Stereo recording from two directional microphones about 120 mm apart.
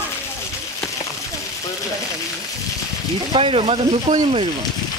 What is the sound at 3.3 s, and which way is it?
Speech, 50° right (ahead or behind).